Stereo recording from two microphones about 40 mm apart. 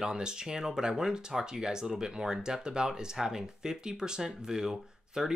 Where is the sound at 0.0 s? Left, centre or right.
Centre.